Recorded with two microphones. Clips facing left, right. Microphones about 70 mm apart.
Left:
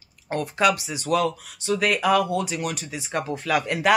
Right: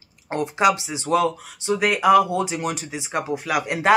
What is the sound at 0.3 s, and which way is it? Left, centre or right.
Speech, centre.